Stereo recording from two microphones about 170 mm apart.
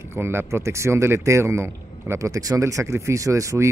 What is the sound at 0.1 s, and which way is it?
A man's voice, 15° right (ahead or behind).